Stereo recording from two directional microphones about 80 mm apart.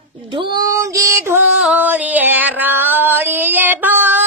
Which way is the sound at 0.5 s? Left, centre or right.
Right.